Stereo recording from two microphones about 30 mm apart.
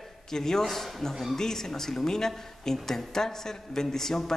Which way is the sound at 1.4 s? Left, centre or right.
Centre.